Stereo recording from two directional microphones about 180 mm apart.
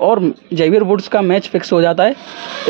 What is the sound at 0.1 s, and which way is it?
A man's voice, 15° right (ahead or behind).